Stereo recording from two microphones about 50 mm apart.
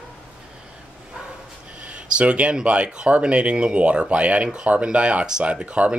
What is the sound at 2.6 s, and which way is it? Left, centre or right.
Speech, centre.